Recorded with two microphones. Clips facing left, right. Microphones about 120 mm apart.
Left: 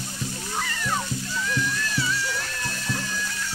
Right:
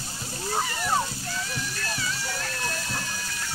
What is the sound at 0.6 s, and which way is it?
Music, 20° right (ahead or behind).